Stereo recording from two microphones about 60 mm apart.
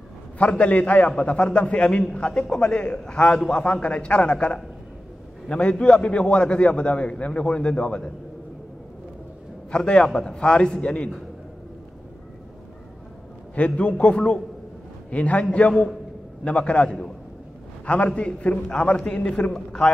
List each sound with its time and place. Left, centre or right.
0.4 s a man's voice: left
9.7 s a man's voice: centre
13.6 s a man's voice: left